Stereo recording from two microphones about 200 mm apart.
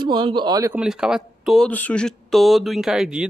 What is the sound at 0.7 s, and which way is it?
Speech, 5° right (ahead or behind).